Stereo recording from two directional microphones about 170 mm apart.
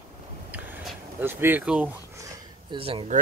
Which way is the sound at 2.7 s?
30° right (ahead or behind).